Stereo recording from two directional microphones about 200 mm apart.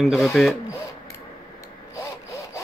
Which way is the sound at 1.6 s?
15° left (ahead or behind).